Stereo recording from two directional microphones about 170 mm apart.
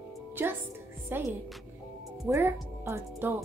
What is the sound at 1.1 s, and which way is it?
Speech, 10° right (ahead or behind).